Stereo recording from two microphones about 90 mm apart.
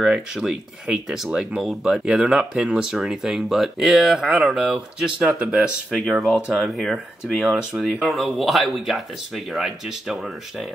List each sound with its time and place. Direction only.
0.0 s speech: 5° right (ahead or behind)